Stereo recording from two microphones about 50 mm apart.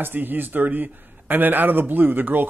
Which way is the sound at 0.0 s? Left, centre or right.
Right.